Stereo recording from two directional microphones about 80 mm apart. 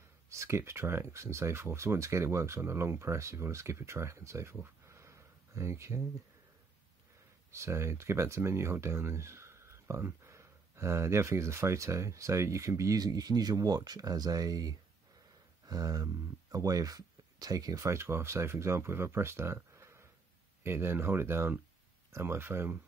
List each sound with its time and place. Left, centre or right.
0.3 s speech: right
7.5 s speech: right
15.6 s a sound: right
16.5 s speech: right
17.8 s speech: right